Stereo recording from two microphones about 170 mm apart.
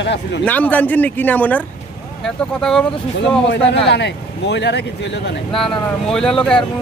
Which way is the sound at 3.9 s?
90° left.